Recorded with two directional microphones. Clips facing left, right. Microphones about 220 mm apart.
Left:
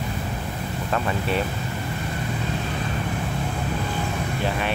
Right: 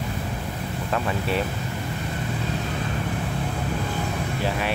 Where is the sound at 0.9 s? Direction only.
5° right (ahead or behind).